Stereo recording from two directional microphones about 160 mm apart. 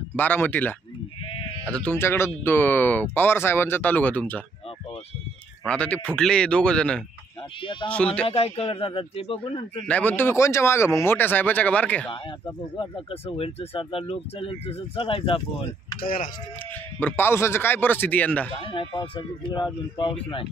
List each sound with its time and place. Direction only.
0.1 s speech: 10° left (ahead or behind)
5.7 s speech: 5° left (ahead or behind)
7.6 s sheep: 30° left (ahead or behind)
7.9 s speech: 5° left (ahead or behind)
8.3 s speech: 35° left (ahead or behind)
9.8 s speech: 10° left (ahead or behind)
12.7 s speech: 35° left (ahead or behind)
16.0 s speech: 65° left (ahead or behind)
16.7 s speech: 10° left (ahead or behind)
18.7 s speech: 30° left (ahead or behind)